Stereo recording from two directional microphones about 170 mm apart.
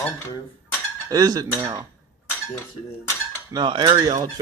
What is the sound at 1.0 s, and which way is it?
Speech, 20° right (ahead or behind).